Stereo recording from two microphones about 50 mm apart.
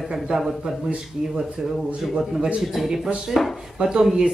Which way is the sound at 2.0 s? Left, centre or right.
Centre.